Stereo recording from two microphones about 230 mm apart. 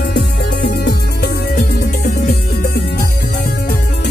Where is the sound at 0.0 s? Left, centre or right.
Left.